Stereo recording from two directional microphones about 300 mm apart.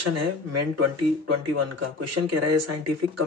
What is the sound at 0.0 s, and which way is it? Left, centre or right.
Speech, right.